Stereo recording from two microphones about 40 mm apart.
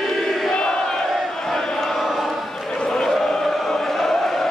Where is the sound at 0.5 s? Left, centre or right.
Centre.